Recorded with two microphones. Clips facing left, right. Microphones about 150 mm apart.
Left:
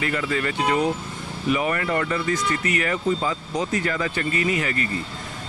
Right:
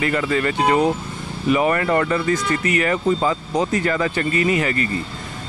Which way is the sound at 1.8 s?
55° right (ahead or behind).